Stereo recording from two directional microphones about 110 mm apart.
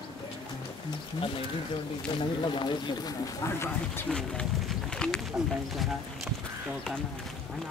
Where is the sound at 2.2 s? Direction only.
45° left (ahead or behind); by 4.1 s 25° left (ahead or behind).